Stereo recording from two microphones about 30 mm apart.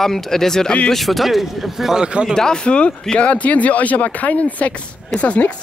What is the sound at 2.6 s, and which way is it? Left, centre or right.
Speech, left.